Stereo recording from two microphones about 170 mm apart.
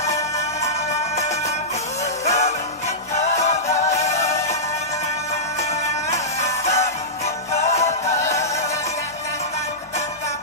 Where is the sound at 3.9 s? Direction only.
40° left (ahead or behind).